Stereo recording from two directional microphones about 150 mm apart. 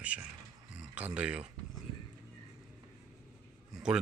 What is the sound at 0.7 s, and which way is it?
Speech, 10° right (ahead or behind).